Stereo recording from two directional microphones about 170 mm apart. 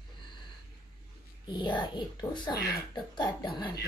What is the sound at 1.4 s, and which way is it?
Speech, 25° left (ahead or behind).